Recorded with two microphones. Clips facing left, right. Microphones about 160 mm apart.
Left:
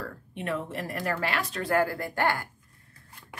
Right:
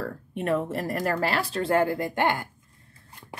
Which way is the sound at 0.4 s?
40° right (ahead or behind).